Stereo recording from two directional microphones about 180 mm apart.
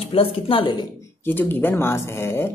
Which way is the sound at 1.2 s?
10° left (ahead or behind).